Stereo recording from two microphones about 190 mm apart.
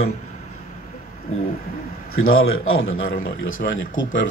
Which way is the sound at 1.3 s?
35° left (ahead or behind).